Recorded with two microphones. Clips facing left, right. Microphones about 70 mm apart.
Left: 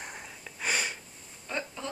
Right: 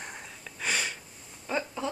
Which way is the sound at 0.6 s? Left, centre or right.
Centre.